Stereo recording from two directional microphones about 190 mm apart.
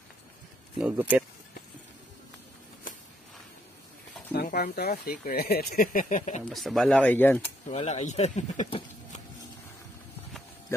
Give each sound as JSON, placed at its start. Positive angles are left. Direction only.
{"t": 0.7, "sound": "speech", "side_deg": -5}
{"t": 4.3, "sound": "speech", "side_deg": 55}
{"t": 6.5, "sound": "speech", "side_deg": 0}
{"t": 7.6, "sound": "speech", "side_deg": 35}